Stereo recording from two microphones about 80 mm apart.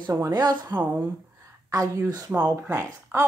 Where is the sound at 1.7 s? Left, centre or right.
Right.